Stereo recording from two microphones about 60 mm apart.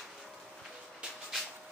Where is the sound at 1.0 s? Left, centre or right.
Centre.